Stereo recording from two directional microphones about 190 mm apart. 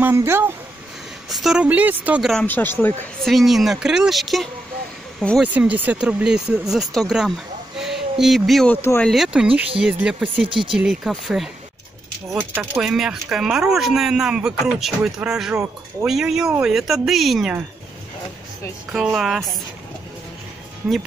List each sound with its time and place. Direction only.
0.0 s speech: 15° right (ahead or behind)
1.3 s speech: centre (ahead or behind)
2.4 s speech: 10° left (ahead or behind)
7.8 s a sound: centre (ahead or behind)
8.8 s speech: 10° left (ahead or behind)
9.1 s speech: 5° right (ahead or behind)
10.3 s speech: 25° right (ahead or behind)
10.8 s speech: centre (ahead or behind)
18.9 s speech: centre (ahead or behind)